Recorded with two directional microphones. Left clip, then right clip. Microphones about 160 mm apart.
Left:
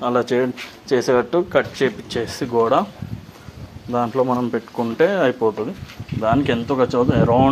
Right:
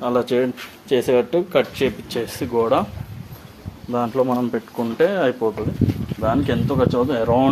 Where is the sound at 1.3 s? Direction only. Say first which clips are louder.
Left 1 dB; 5° left (ahead or behind).